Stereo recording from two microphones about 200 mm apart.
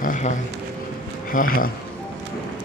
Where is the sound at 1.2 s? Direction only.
45° left (ahead or behind).